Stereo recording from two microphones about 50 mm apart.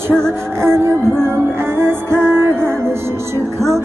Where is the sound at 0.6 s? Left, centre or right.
Right.